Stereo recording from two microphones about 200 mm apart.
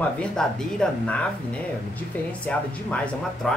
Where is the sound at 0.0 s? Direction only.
5° left (ahead or behind).